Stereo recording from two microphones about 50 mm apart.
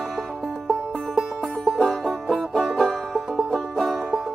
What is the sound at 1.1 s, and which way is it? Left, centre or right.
Music, centre.